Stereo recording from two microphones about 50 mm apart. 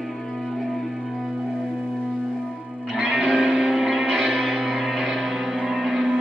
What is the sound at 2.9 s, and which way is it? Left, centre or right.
Music, centre.